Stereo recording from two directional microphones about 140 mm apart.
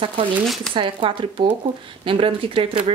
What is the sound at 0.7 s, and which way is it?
Speech, 35° right (ahead or behind).